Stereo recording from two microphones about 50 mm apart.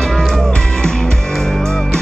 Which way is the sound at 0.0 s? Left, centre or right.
Centre.